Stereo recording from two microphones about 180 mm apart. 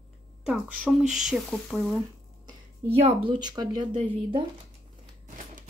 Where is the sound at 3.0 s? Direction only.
30° right (ahead or behind).